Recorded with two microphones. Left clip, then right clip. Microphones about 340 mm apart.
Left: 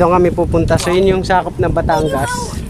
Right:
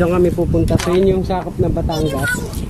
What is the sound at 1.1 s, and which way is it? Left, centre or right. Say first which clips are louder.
Speech: left 5 dB; left.